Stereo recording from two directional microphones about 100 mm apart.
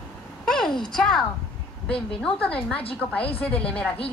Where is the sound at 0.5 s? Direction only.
5° left (ahead or behind).